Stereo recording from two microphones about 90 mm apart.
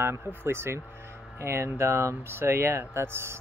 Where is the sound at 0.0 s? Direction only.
25° right (ahead or behind).